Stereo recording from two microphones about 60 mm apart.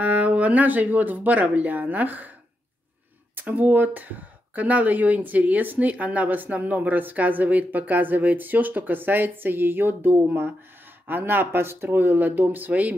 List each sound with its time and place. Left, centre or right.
0.0 s speech: right
3.3 s speech: right